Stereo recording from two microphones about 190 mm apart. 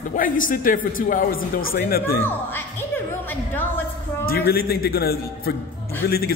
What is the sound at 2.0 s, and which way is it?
Speech, 10° left (ahead or behind).